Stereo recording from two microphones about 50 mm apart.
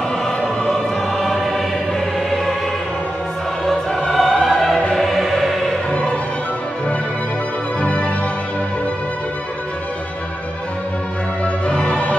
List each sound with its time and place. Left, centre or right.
0.1 s music: centre
4.1 s music: centre
5.9 s music: left
7.8 s music: left
11.4 s music: left